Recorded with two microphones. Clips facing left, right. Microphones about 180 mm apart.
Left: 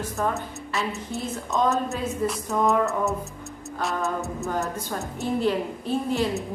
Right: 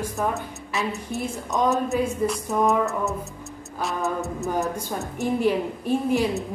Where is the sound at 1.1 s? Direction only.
15° right (ahead or behind).